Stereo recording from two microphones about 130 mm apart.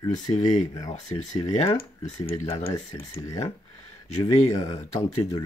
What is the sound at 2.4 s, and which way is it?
Speech, 50° left (ahead or behind).